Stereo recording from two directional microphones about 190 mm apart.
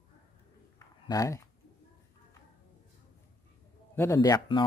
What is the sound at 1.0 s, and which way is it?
Speech, 20° left (ahead or behind).